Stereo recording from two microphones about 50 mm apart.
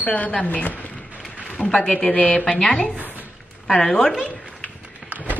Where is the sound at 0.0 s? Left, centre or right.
Left.